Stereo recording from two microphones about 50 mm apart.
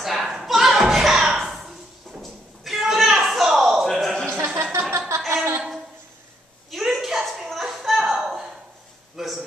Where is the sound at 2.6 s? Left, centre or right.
Centre.